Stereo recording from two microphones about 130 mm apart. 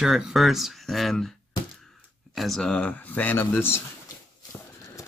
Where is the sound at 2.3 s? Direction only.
Centre (ahead or behind); by 3.8 s 20° left (ahead or behind).